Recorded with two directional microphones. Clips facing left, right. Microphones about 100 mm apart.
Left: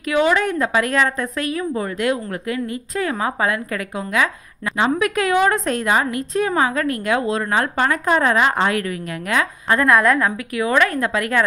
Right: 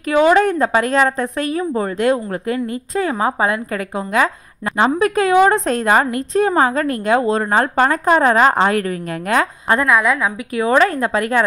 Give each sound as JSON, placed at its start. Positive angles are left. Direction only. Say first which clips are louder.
{"t": 0.1, "sound": "a woman's voice", "louder": "right 5 dB", "side_deg": -35}
{"t": 5.9, "sound": "a woman's voice", "louder": "right 5 dB", "side_deg": -40}
{"t": 9.8, "sound": "a woman's voice", "louder": "left 3 dB", "side_deg": 0}
{"t": 10.6, "sound": "a woman's voice", "louder": "right 3 dB", "side_deg": -30}